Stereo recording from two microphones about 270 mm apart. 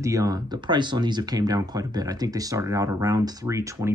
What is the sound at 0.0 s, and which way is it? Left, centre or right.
Speech, centre.